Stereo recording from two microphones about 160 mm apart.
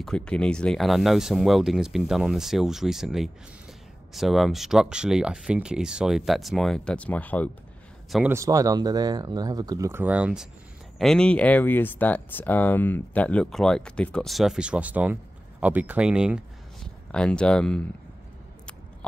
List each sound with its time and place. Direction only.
0.0 s speech: 5° left (ahead or behind)
8.3 s speech: 20° right (ahead or behind)
16.8 s speech: 5° left (ahead or behind)